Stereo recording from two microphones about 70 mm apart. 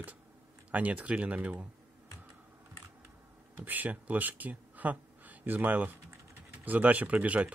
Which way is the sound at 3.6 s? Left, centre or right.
Right.